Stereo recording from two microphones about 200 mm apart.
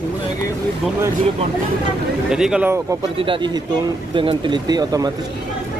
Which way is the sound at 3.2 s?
25° right (ahead or behind).